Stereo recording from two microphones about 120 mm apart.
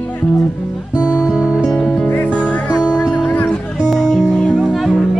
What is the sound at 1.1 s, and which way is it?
Music, 5° right (ahead or behind).